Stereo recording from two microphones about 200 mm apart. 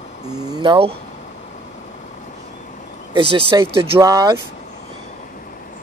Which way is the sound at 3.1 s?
25° right (ahead or behind).